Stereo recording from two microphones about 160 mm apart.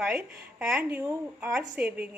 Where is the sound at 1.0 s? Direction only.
15° right (ahead or behind).